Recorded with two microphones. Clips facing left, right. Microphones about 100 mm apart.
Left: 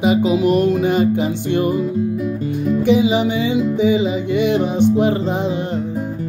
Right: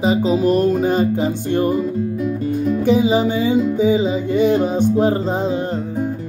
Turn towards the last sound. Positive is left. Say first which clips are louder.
# left 1 dB
turn(degrees=-45)  # may be behind; listen again after turning